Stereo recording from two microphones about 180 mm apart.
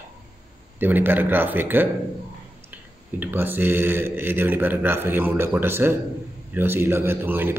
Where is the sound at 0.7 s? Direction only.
10° right (ahead or behind).